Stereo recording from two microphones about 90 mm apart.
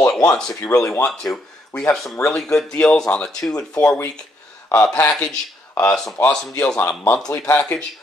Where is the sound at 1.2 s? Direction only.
10° left (ahead or behind).